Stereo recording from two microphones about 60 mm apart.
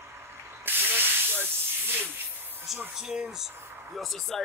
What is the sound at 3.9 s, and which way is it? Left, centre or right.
Speech, centre.